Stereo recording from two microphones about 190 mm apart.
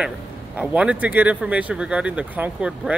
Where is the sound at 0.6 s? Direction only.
5° right (ahead or behind).